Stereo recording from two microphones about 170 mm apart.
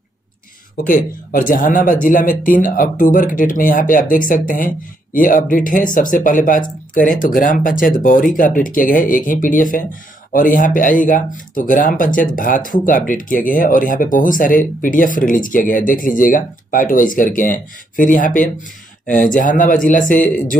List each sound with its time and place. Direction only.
0.8 s speech: 55° left (ahead or behind)